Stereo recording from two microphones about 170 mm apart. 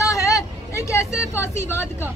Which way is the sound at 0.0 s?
20° left (ahead or behind).